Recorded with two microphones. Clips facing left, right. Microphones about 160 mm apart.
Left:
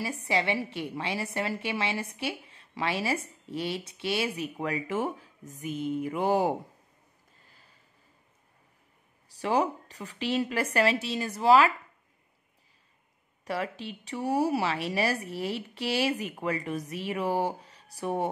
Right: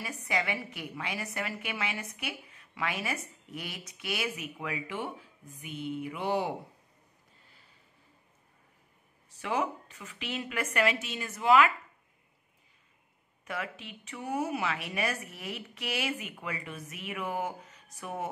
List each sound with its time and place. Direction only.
0.0 s a woman's voice: 30° left (ahead or behind)
9.3 s a woman's voice: 35° left (ahead or behind)
13.5 s a woman's voice: 35° left (ahead or behind)